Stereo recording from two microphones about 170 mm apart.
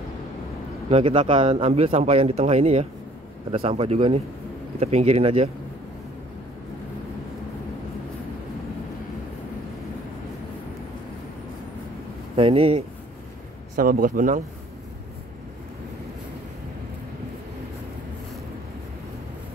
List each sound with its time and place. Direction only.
0.8 s speech: 35° right (ahead or behind)
12.4 s speech: 35° right (ahead or behind)
13.7 s speech: 55° right (ahead or behind)